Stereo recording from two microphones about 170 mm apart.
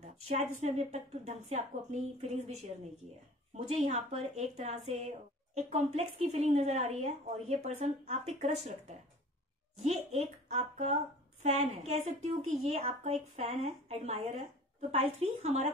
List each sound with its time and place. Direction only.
0.3 s a woman's voice: 40° right (ahead or behind)